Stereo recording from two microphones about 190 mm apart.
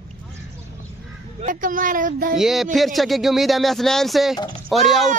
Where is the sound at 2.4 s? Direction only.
Centre (ahead or behind).